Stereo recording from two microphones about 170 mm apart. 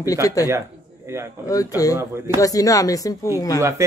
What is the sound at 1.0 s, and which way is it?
Speech, 15° right (ahead or behind).